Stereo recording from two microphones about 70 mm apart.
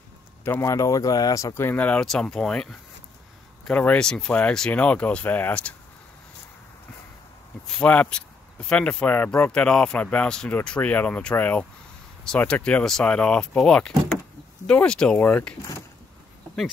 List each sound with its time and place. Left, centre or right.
0.5 s speech: left
1.5 s speech: left
2.0 s speech: centre
3.7 s speech: centre
4.3 s speech: left
7.8 s speech: centre